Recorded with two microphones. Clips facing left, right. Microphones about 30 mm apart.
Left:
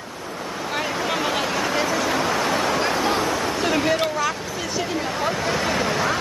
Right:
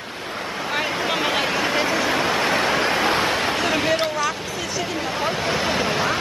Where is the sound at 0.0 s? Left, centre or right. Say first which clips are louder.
Right 2 dB; right.